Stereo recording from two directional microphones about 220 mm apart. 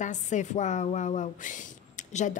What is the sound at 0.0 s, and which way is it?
A woman's voice, 35° left (ahead or behind).